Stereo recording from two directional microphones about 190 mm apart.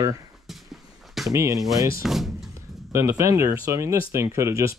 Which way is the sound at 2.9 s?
15° right (ahead or behind).